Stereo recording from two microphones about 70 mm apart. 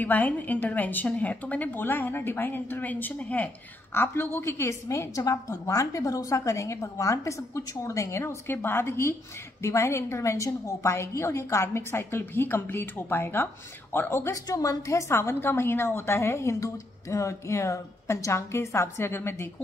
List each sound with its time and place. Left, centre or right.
0.0 s a woman's voice: left
3.9 s a woman's voice: left
14.5 s a woman's voice: left